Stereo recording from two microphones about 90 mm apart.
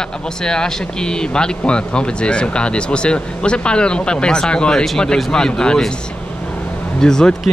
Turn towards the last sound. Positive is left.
turn(degrees=5)  # may be behind; listen again after turning